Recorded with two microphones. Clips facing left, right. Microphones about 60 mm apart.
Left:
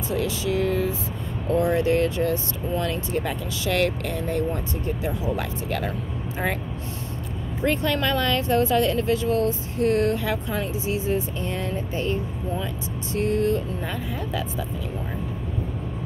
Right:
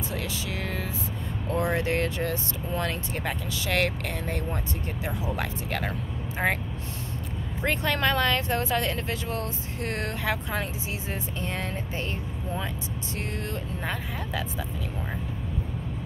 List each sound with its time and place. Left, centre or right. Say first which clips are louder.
0.1 s speech: left 8 dB; right
7.6 s speech: left 3 dB; right